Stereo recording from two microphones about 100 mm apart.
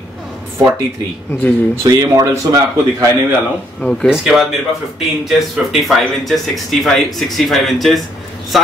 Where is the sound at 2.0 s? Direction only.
35° right (ahead or behind).